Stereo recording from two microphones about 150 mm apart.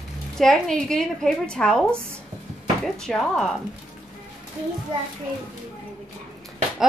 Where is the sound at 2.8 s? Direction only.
Centre (ahead or behind).